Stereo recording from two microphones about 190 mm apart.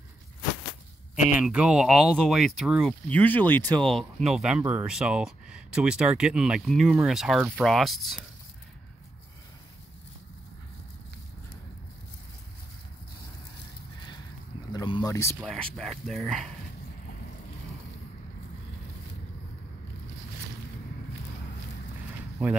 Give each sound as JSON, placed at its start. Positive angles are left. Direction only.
{"t": 1.4, "sound": "speech", "side_deg": -5}
{"t": 14.7, "sound": "a sound", "side_deg": 25}
{"t": 15.4, "sound": "speech", "side_deg": 0}